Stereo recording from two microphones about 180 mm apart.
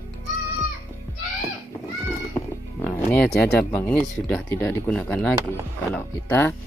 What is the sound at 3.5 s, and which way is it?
Speech, 10° left (ahead or behind).